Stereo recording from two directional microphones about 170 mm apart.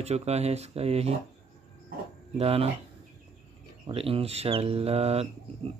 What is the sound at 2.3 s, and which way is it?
Speech, 35° right (ahead or behind).